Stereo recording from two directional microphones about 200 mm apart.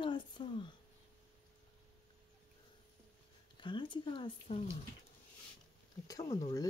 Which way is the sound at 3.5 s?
25° left (ahead or behind).